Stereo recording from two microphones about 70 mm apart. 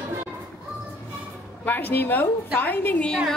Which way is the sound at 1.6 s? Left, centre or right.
Left.